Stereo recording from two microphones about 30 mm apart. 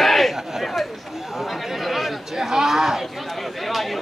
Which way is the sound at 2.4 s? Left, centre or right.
Centre.